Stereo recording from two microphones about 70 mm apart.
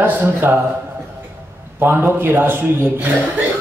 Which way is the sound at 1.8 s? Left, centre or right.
Right.